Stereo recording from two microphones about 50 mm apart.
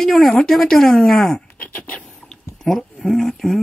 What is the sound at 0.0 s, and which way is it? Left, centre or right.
Speech, centre.